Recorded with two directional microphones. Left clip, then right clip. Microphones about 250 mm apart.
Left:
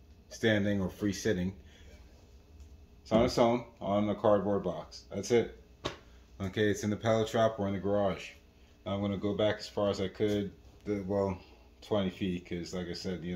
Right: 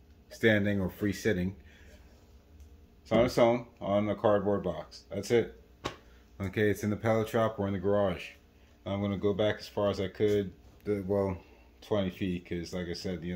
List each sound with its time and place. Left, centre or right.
0.3 s speech: right
3.1 s speech: right